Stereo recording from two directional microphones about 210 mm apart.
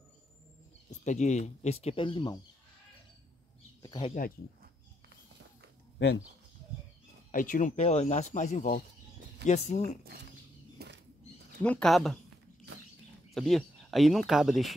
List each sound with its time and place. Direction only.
1.0 s speech: 35° left (ahead or behind)
3.8 s speech: 15° left (ahead or behind)
5.9 s speech: 60° left (ahead or behind)
7.2 s speech: 40° left (ahead or behind)
10.8 s bird flight: 50° right (ahead or behind)
11.6 s a woman's voice: 5° left (ahead or behind)
13.3 s speech: centre (ahead or behind)